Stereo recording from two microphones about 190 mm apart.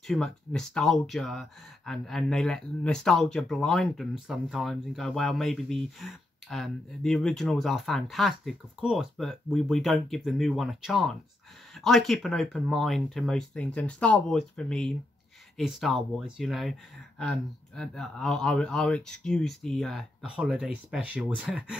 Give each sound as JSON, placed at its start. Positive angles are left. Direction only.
{"t": 0.0, "sound": "speech", "side_deg": 0}